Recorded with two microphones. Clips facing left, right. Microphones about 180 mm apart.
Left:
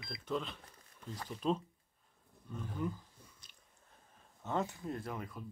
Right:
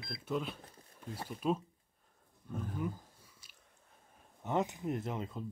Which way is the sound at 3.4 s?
5° right (ahead or behind).